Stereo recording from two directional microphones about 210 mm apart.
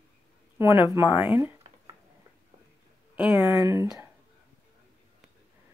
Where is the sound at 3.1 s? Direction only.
5° right (ahead or behind).